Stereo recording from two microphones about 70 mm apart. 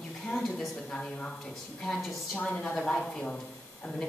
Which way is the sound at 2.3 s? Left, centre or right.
Centre.